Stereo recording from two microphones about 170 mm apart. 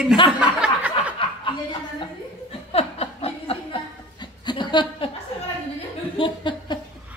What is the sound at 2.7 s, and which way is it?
Chuckle, 35° left (ahead or behind).